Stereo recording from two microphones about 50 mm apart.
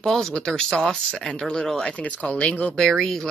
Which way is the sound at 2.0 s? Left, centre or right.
Left.